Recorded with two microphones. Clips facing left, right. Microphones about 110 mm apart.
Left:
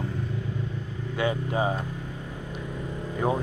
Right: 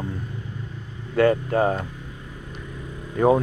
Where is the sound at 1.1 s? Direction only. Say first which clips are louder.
Right 8 dB; 55° right (ahead or behind).